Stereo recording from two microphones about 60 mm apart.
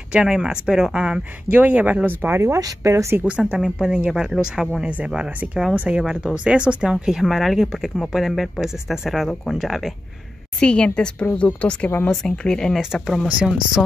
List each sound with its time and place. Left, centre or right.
0.3 s speech: centre
1.6 s speech: right
2.6 s speech: right
3.3 s speech: centre
4.8 s speech: centre
10.6 s a woman's voice: centre
12.1 s a woman's voice: centre
12.7 s speech: centre
13.4 s speech: centre